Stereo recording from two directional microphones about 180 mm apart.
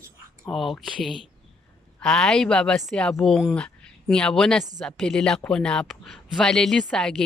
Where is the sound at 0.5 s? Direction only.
Centre (ahead or behind).